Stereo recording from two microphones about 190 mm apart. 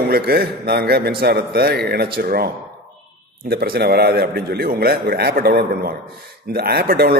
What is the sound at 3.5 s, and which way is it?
A man's voice, 55° right (ahead or behind).